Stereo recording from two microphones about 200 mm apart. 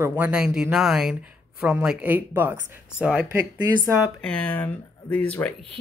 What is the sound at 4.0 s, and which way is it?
Speech, 5° left (ahead or behind).